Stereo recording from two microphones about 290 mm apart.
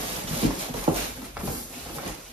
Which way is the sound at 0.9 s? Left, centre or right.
Centre.